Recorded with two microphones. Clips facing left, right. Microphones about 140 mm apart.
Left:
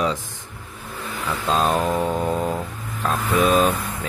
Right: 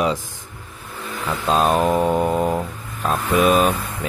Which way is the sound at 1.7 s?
25° right (ahead or behind).